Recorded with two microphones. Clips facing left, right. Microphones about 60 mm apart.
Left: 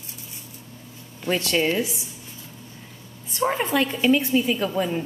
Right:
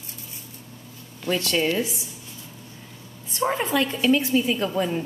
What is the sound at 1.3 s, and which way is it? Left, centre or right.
Speech, left.